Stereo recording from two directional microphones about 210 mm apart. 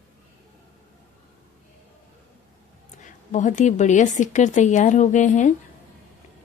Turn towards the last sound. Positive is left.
turn(degrees=35)  # may be behind; listen again after turning